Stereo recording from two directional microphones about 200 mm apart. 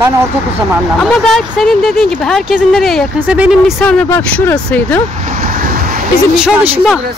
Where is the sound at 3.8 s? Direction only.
5° left (ahead or behind).